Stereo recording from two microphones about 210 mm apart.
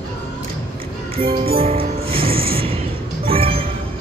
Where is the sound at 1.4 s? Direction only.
25° right (ahead or behind).